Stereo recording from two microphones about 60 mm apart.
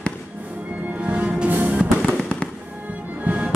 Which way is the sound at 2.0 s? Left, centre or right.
Centre.